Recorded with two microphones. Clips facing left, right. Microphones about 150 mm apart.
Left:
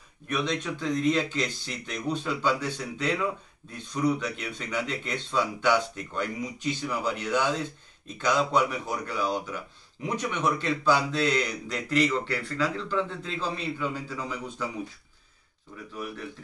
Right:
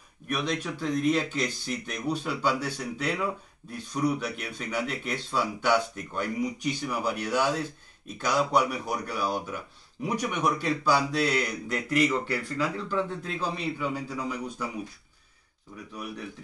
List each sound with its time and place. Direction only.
0.3 s speech: 10° right (ahead or behind)
15.9 s speech: 15° right (ahead or behind)